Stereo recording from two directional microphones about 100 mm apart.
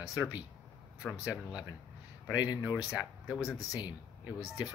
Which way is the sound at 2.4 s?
45° left (ahead or behind).